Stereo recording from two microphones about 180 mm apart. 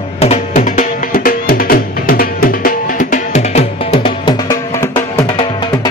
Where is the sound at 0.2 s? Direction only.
40° left (ahead or behind).